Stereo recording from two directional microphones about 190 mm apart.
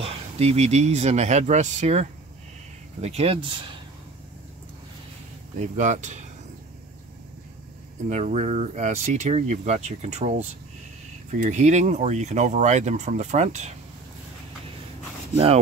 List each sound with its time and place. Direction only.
0.0 s speech: 35° right (ahead or behind)
5.6 s speech: 40° right (ahead or behind)
8.1 s speech: 40° right (ahead or behind)
15.3 s speech: 30° right (ahead or behind)